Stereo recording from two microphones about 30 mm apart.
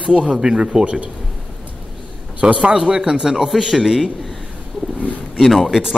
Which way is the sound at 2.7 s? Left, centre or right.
Right.